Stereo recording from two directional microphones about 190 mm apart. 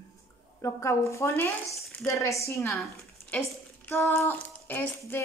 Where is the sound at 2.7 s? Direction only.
Centre (ahead or behind).